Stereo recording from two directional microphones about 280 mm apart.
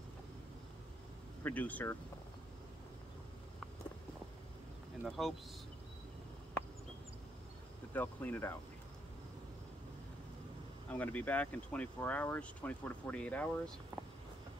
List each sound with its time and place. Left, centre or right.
1.4 s speech: centre
5.0 s speech: centre
7.9 s speech: centre
10.9 s speech: centre